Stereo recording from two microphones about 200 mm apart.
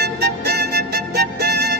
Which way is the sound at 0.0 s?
55° right (ahead or behind).